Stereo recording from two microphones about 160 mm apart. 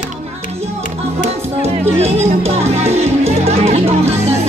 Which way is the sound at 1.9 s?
40° right (ahead or behind).